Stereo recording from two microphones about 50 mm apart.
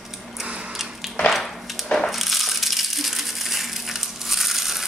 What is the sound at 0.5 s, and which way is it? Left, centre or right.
Biting, right.